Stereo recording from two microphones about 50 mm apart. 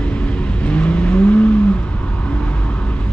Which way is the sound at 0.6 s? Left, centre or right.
Left.